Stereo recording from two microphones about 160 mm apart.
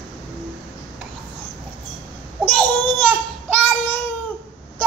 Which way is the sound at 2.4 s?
10° left (ahead or behind).